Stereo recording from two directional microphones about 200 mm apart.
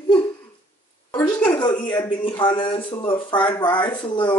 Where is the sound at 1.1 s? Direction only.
10° left (ahead or behind).